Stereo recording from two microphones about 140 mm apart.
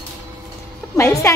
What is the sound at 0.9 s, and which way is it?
Speech, 20° left (ahead or behind).